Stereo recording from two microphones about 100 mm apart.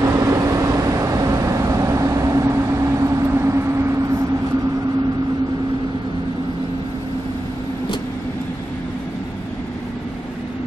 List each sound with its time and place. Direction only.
0.0 s vehicle: 30° right (ahead or behind)